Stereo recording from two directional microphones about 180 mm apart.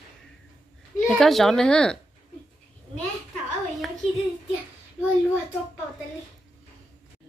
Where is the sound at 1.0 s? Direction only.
Centre (ahead or behind).